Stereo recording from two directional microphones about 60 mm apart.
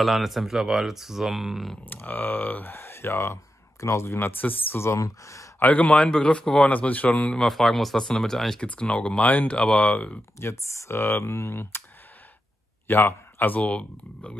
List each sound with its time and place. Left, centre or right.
0.0 s speech: centre
1.9 s speech: left
4.2 s speech: left
4.7 s speech: left
5.0 s speech: left
5.6 s speech: left
6.7 s speech: left
7.3 s speech: centre
8.6 s speech: left
10.4 s speech: left
11.0 s speech: left
12.8 s speech: left